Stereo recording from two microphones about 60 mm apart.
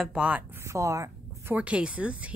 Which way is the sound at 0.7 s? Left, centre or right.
Right.